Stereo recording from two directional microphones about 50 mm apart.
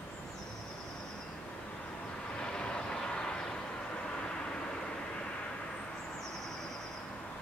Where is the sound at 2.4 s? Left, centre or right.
Centre.